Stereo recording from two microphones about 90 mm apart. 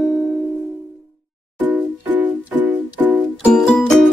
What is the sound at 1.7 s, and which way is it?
Music, 20° right (ahead or behind).